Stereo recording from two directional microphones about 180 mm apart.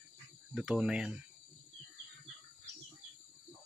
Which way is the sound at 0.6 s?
5° right (ahead or behind).